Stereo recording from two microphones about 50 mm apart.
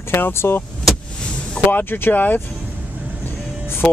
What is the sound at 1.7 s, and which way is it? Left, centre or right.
Speech, left.